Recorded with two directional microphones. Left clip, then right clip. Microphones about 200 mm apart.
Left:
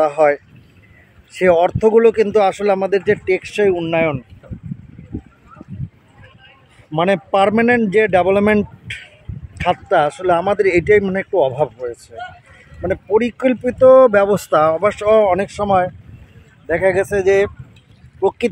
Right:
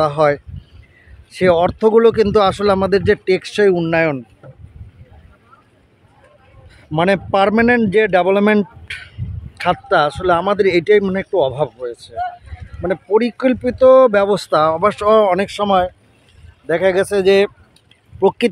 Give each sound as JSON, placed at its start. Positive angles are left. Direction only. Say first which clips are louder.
{"t": 0.0, "sound": "speech", "louder": "left 1 dB", "side_deg": 0}
{"t": 4.4, "sound": "boat", "louder": "left 2 dB", "side_deg": -50}
{"t": 6.9, "sound": "speech", "louder": "right 1 dB", "side_deg": -10}